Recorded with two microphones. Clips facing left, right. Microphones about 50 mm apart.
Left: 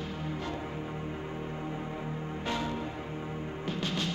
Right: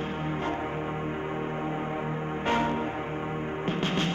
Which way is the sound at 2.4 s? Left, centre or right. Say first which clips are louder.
Right 7 dB; right.